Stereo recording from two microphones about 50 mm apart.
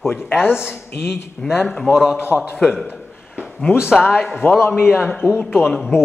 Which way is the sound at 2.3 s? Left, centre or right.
Left.